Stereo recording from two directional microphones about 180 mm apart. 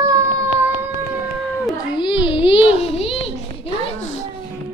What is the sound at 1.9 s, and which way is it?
Speech, 25° left (ahead or behind).